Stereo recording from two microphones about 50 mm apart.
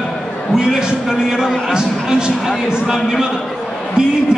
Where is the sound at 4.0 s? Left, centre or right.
Centre.